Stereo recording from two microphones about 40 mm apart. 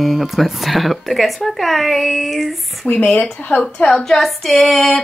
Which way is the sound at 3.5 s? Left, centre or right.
Left.